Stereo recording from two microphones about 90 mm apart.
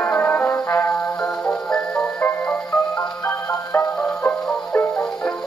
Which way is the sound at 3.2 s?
20° left (ahead or behind).